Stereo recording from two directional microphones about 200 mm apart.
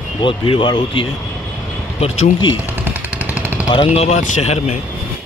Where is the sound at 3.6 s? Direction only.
30° left (ahead or behind).